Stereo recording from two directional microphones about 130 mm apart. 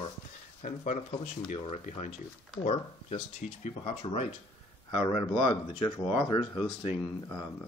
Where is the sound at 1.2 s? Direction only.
60° left (ahead or behind).